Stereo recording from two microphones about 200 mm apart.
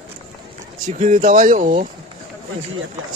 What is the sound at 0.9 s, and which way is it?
Speech, 35° right (ahead or behind).